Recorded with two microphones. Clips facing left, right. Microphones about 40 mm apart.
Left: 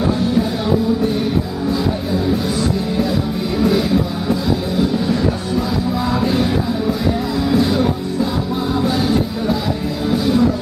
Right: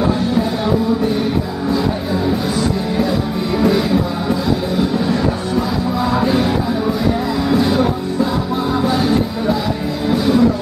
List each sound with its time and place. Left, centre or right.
2.2 s music: centre